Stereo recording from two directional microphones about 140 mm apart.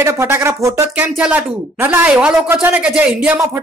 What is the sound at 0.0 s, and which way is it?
Speech, 20° right (ahead or behind).